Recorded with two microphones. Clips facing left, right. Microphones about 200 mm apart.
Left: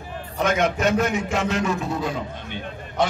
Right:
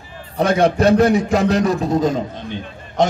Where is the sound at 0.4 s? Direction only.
35° right (ahead or behind).